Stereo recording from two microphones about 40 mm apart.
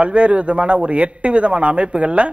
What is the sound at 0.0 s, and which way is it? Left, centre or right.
A man's voice, right.